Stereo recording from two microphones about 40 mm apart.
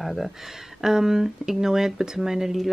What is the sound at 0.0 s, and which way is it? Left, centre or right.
Speech, centre.